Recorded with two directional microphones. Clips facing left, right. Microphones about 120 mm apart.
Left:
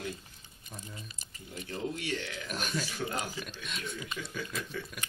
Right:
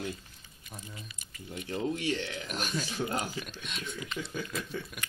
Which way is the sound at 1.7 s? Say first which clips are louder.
Right 4 dB; 25° right (ahead or behind).